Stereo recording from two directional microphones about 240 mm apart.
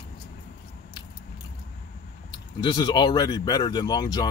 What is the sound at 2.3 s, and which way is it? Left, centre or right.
Speech, centre.